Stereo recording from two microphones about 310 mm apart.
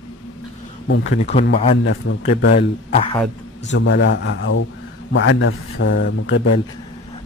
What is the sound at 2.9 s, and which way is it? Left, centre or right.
Speech, centre.